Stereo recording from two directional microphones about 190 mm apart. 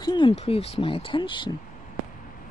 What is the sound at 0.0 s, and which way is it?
Speech, 25° left (ahead or behind).